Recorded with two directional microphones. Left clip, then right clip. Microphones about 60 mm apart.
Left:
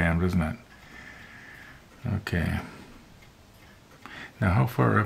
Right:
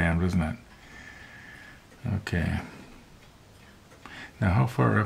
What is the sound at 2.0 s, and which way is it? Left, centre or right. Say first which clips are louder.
Speech: left 1 dB; left.